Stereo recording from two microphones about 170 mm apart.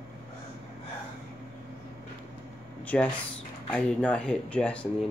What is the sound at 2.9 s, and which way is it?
Speech, 5° left (ahead or behind).